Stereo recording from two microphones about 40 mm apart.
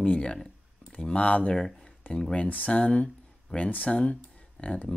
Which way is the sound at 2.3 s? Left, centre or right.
Left.